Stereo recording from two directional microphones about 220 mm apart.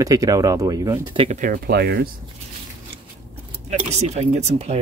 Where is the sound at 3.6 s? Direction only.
30° right (ahead or behind).